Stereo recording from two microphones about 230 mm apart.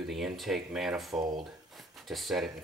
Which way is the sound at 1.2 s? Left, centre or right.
Centre.